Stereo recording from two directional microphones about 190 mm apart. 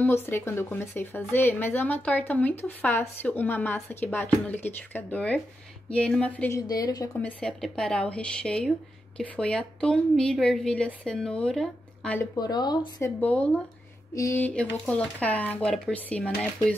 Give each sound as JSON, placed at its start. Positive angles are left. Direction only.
{"t": 0.0, "sound": "a woman's voice", "side_deg": 10}
{"t": 6.7, "sound": "speech", "side_deg": 20}
{"t": 7.2, "sound": "speech", "side_deg": 5}
{"t": 12.4, "sound": "speech", "side_deg": 20}
{"t": 13.2, "sound": "a woman's voice", "side_deg": 5}